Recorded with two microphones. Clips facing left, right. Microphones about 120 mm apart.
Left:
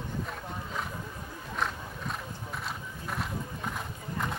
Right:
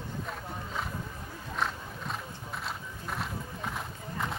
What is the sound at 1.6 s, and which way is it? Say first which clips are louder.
Horse: even; centre (ahead or behind).